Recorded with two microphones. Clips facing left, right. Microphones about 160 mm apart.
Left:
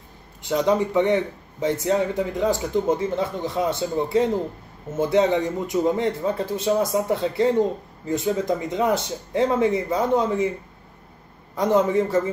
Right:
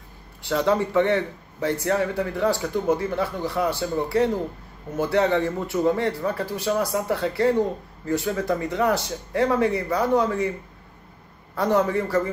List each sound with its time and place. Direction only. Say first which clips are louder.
0.4 s a man's voice: left 1 dB; 20° left (ahead or behind)
11.5 s a man's voice: left 2 dB; 20° left (ahead or behind)